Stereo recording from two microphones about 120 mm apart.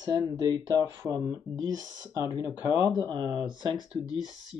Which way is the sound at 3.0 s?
40° right (ahead or behind).